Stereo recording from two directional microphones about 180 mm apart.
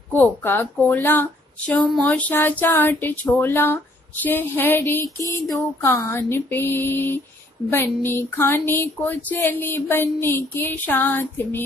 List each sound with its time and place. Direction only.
0.1 s speech: 10° left (ahead or behind)